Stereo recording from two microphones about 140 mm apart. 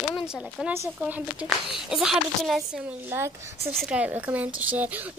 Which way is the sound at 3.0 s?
15° right (ahead or behind).